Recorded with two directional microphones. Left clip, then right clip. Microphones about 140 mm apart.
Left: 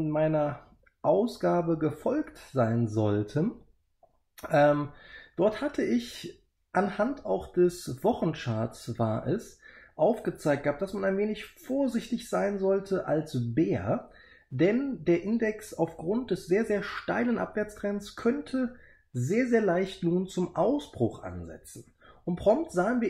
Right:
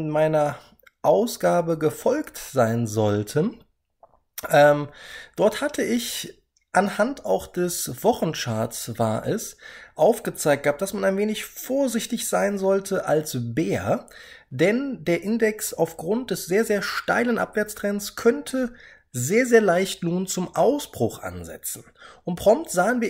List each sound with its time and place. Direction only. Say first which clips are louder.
0.0 s speech: right 6 dB; 20° right (ahead or behind)